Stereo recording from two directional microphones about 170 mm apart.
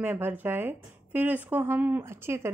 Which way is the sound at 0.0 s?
10° right (ahead or behind).